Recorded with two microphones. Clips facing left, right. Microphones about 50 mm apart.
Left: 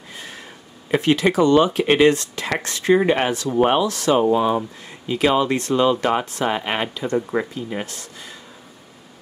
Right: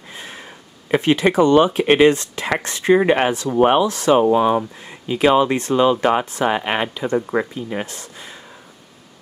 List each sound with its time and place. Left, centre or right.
0.9 s speech: right
7.3 s speech: right
7.7 s speech: right